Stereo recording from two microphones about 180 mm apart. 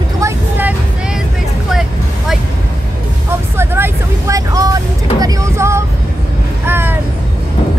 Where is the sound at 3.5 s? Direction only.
15° right (ahead or behind).